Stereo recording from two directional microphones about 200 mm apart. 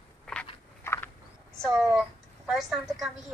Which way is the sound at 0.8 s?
10° left (ahead or behind).